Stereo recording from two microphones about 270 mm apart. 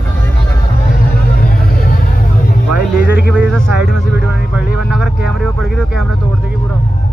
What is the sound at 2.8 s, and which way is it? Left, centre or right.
Music, left.